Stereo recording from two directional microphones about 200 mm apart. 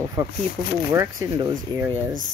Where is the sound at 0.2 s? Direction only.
10° right (ahead or behind).